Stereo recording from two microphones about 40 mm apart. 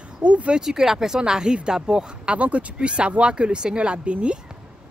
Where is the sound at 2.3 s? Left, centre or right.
Right.